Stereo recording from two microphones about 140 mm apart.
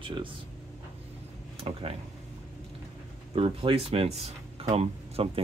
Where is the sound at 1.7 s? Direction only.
45° right (ahead or behind).